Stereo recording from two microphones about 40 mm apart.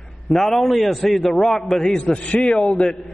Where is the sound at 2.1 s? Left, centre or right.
Left.